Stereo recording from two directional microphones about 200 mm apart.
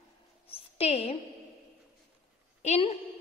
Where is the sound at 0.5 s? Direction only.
30° left (ahead or behind).